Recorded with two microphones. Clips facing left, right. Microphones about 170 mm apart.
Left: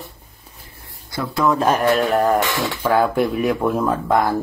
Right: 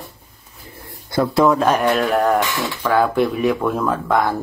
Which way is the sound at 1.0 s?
50° right (ahead or behind).